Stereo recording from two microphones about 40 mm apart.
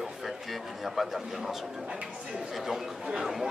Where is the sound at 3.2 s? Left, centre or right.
Centre.